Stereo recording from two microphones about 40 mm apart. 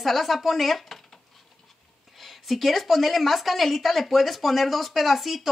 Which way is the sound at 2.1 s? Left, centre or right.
Centre.